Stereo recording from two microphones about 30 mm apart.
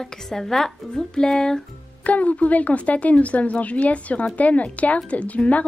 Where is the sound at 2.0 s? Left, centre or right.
Left.